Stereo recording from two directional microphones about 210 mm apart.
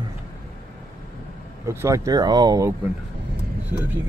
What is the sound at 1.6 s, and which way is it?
Speech, 15° right (ahead or behind).